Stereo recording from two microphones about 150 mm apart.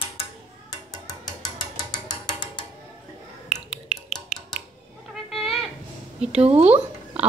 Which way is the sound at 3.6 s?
5° right (ahead or behind).